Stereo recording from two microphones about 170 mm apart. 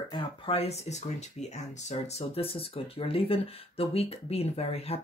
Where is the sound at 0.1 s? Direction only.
35° left (ahead or behind).